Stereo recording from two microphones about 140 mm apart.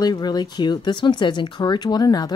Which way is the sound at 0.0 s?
30° left (ahead or behind).